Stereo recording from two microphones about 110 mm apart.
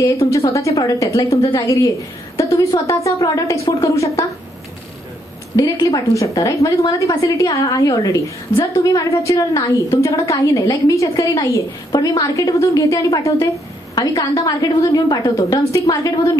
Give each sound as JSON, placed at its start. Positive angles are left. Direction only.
{"t": 0.0, "sound": "a woman's voice", "side_deg": 30}
{"t": 5.6, "sound": "a woman's voice", "side_deg": 30}